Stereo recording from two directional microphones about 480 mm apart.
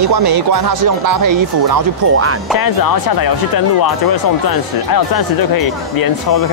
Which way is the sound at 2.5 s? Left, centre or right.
Left.